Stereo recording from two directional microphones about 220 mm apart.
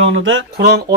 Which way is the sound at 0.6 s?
45° right (ahead or behind).